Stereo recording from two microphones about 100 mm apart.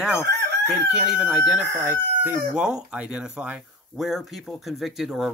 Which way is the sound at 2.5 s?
10° right (ahead or behind).